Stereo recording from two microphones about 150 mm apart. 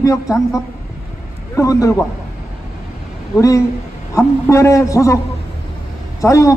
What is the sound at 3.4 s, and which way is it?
A man's voice, 20° left (ahead or behind).